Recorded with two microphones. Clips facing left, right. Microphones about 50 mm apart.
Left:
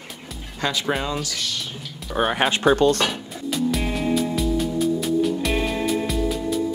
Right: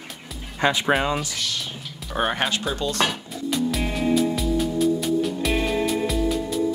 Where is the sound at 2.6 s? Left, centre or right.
Left.